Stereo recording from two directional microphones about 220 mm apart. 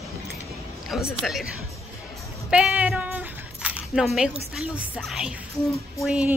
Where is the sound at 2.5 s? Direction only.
5° right (ahead or behind).